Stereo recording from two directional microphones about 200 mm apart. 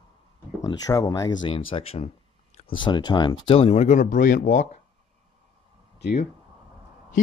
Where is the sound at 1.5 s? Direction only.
25° left (ahead or behind).